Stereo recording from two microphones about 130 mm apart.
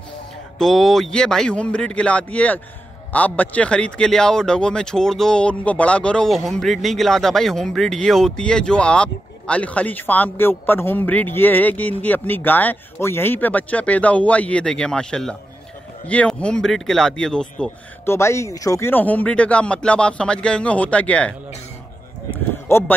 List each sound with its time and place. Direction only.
0.6 s speech: centre (ahead or behind)
18.0 s speech: 20° left (ahead or behind)
22.7 s speech: 20° left (ahead or behind)